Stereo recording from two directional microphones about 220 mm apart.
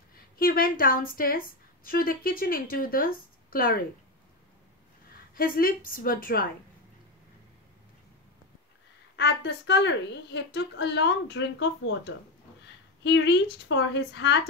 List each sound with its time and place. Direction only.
0.1 s a woman's voice: 40° left (ahead or behind)
5.3 s a woman's voice: 40° left (ahead or behind)
9.1 s a woman's voice: 50° left (ahead or behind)